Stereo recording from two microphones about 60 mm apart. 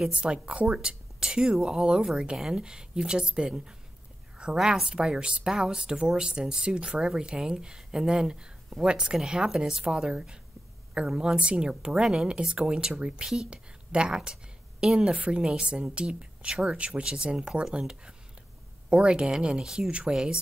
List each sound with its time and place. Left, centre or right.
0.1 s speech: centre